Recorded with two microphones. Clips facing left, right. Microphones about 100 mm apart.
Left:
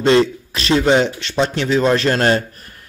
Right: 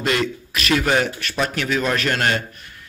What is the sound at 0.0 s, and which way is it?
A man's voice, 30° left (ahead or behind).